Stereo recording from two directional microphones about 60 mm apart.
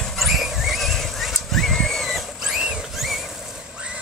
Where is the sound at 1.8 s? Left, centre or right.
Centre.